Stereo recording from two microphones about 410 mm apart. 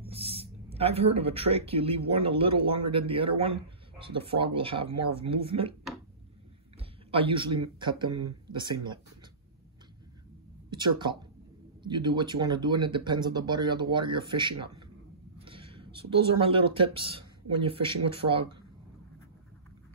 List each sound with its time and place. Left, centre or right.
0.1 s speech: centre
6.8 s a sound: centre
8.1 s speech: right
8.5 s speech: centre
10.7 s speech: centre
15.3 s a sound: centre
16.3 s speech: centre